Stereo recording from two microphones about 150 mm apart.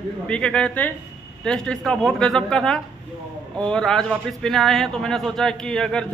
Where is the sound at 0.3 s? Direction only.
5° left (ahead or behind).